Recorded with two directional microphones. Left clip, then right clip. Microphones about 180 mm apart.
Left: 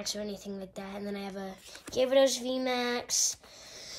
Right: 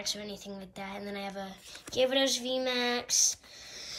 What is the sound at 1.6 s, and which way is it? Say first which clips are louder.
Speech: even; 30° left (ahead or behind).